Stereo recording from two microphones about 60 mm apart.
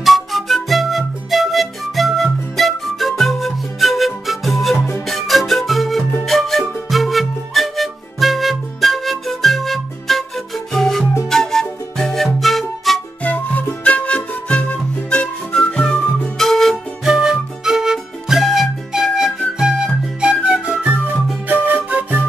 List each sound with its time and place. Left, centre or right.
0.0 s flute: centre
5.0 s music: centre
11.2 s flute: centre
12.4 s music: centre
13.2 s music: left; by 16.7 s centre
17.0 s music: centre
21.5 s flute: right